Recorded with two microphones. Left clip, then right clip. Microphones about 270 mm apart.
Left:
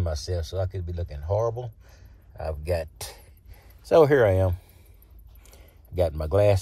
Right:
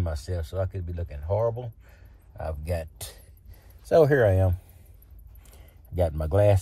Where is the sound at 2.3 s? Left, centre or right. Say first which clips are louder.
Left 4 dB; left.